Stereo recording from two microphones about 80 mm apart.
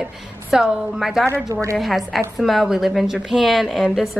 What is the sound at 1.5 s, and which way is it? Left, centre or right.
Speech, right.